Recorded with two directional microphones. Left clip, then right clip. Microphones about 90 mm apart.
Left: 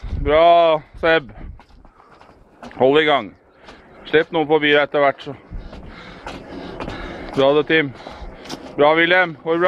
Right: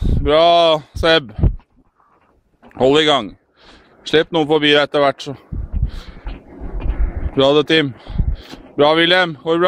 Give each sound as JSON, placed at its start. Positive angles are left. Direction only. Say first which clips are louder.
{"t": 0.2, "sound": "speech", "louder": "right 1 dB", "side_deg": -40}
{"t": 2.7, "sound": "speech", "louder": "right 1 dB", "side_deg": -40}
{"t": 6.2, "sound": "a sound", "louder": "left 7 dB", "side_deg": 20}
{"t": 7.3, "sound": "speech", "louder": "right 2 dB", "side_deg": -40}